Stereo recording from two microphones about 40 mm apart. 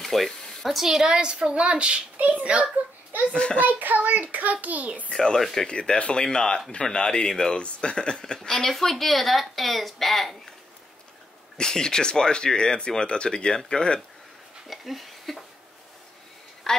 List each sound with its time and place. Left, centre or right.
0.0 s speech: centre; by 2.0 s right
2.1 s a child's voice: right
3.3 s speech: left
3.6 s a child's voice: right
5.1 s speech: centre
11.5 s speech: centre
14.7 s speech: centre
16.6 s a woman's voice: centre